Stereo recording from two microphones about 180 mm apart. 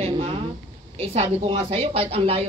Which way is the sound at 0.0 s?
35° right (ahead or behind).